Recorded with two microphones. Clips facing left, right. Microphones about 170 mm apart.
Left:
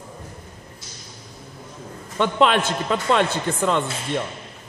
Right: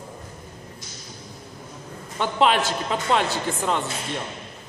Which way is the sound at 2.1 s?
55° left (ahead or behind).